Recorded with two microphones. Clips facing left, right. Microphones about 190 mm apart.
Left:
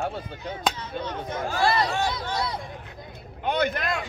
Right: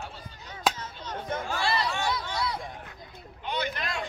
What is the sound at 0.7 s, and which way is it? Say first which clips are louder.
Speech: even; 5° right (ahead or behind).